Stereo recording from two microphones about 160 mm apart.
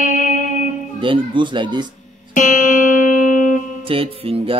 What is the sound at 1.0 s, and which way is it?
Speech, 30° right (ahead or behind).